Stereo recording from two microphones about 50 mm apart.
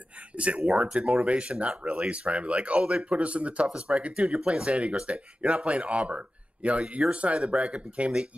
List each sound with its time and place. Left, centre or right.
0.4 s speech: right
0.7 s speech: centre